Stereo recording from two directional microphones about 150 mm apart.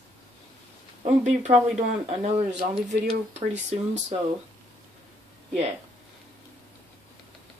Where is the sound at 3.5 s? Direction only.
50° right (ahead or behind).